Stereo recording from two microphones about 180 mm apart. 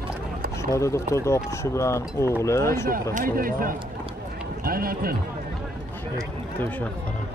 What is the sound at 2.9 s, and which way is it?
Speech, 50° right (ahead or behind).